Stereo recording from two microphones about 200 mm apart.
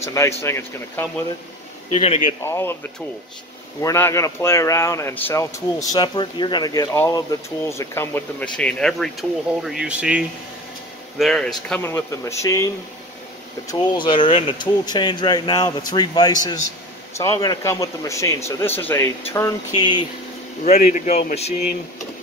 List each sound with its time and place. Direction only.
0.0 s speech: 15° left (ahead or behind)
2.0 s a man's voice: 35° left (ahead or behind)
2.4 s speech: 10° left (ahead or behind)
3.8 s speech: 15° left (ahead or behind)
20.6 s a man's voice: 35° left (ahead or behind)